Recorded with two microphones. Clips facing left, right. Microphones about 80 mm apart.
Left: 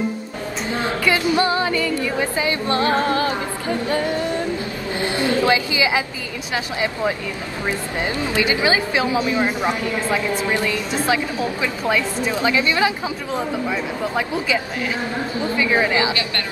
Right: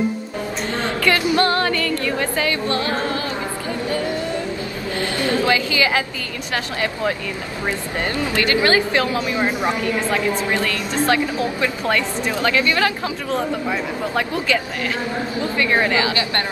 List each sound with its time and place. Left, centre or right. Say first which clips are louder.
0.7 s music: even; centre
2.7 s music: left 3 dB; left
4.9 s a sound: left 1 dB; left
6.5 s music: even; centre